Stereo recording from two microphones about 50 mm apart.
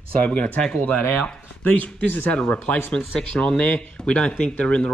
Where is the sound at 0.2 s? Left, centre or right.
Left.